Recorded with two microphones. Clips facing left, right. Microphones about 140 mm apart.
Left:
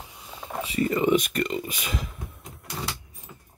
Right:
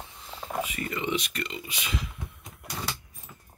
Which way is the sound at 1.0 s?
45° left (ahead or behind).